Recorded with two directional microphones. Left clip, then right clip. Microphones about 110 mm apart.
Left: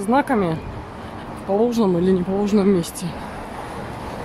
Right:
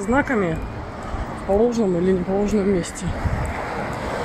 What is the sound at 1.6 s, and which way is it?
Speech, 35° left (ahead or behind).